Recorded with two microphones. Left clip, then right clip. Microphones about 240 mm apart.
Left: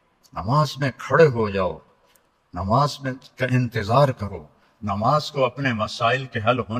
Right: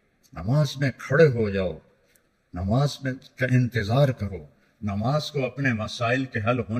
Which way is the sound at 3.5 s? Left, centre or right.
Left.